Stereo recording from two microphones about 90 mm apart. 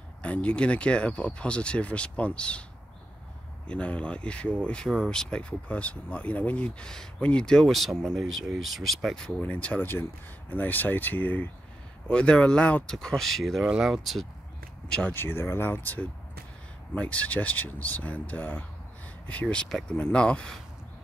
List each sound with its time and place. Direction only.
0.2 s speech: 15° left (ahead or behind)
3.6 s speech: 15° left (ahead or behind)
9.4 s speech: 15° left (ahead or behind)
15.1 s speech: 25° left (ahead or behind)